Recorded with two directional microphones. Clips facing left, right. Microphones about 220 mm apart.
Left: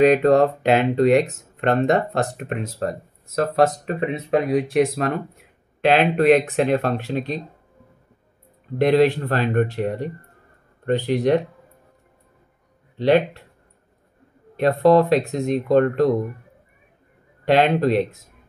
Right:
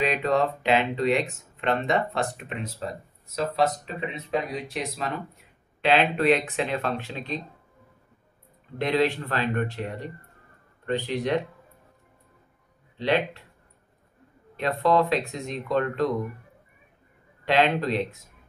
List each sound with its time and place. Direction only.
0.0 s speech: 45° left (ahead or behind)
8.8 s speech: 55° left (ahead or behind)
12.9 s speech: 45° left (ahead or behind)
14.6 s speech: 45° left (ahead or behind)
15.0 s speech: 55° left (ahead or behind)
17.5 s speech: 45° left (ahead or behind)